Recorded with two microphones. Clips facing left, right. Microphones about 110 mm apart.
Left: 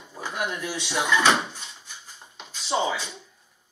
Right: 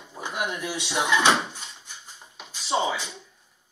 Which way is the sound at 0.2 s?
25° right (ahead or behind).